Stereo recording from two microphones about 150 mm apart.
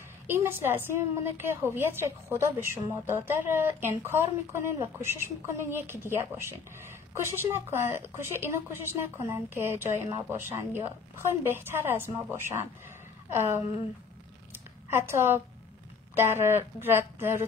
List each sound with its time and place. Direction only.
0.3 s a woman's voice: 15° right (ahead or behind)
14.5 s a sound: 15° right (ahead or behind)
16.2 s a woman's voice: 15° right (ahead or behind)